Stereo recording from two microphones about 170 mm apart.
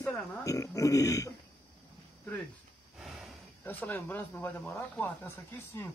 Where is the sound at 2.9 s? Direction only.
Centre (ahead or behind).